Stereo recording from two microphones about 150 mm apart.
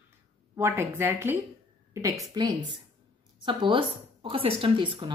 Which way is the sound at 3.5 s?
35° right (ahead or behind).